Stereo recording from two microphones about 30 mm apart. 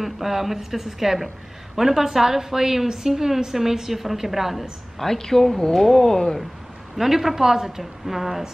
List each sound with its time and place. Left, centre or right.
0.0 s a woman's voice: centre
4.9 s speech: centre
5.9 s speech: left
7.0 s a woman's voice: centre